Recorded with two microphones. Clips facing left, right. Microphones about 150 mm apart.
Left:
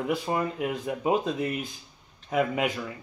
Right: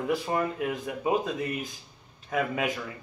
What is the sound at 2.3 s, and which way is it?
Speech, 20° left (ahead or behind).